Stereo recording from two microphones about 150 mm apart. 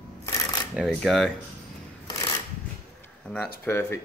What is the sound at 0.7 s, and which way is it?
Speech, centre (ahead or behind).